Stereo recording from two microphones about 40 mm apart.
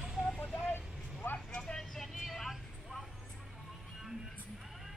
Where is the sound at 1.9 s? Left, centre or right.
Centre.